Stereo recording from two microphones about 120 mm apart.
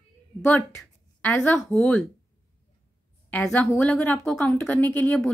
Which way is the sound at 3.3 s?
10° left (ahead or behind).